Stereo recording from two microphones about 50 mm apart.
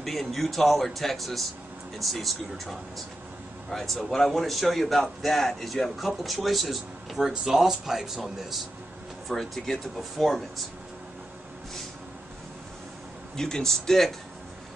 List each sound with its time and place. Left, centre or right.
0.0 s a man's voice: centre
3.7 s a man's voice: centre
13.4 s speech: centre